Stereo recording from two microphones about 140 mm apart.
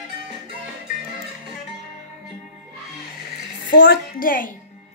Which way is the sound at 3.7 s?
85° left.